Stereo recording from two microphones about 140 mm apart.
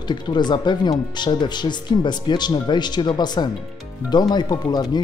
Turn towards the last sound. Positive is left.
turn(degrees=30)  # may be behind; listen again after turning